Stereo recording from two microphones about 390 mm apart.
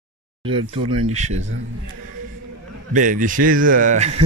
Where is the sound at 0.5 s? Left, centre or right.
Centre.